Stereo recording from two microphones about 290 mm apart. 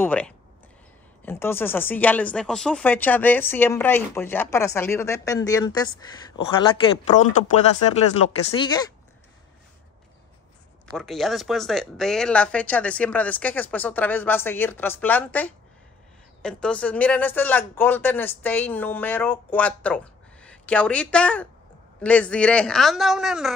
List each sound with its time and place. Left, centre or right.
0.0 s speech: centre
8.5 s speech: centre
10.9 s speech: centre